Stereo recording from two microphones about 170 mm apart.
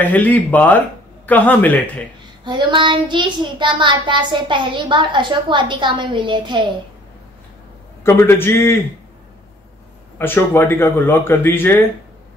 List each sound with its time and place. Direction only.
0.0 s speech: 10° left (ahead or behind)
2.4 s child singing: 25° right (ahead or behind)
8.0 s speech: 15° left (ahead or behind)
10.1 s speech: 10° left (ahead or behind)